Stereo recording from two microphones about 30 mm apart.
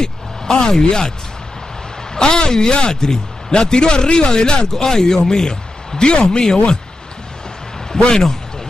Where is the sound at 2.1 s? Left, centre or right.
Left.